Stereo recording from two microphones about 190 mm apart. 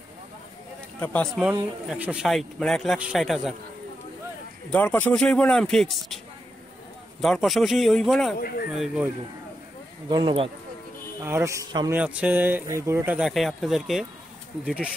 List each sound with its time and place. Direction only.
1.0 s speech: 5° left (ahead or behind)
4.6 s speech: 5° left (ahead or behind)
7.2 s speech: centre (ahead or behind)
8.4 s speech: 50° left (ahead or behind)
8.7 s speech: 5° right (ahead or behind)
10.0 s speech: 25° right (ahead or behind)
11.2 s speech: 15° right (ahead or behind)
12.0 s speech: 5° right (ahead or behind)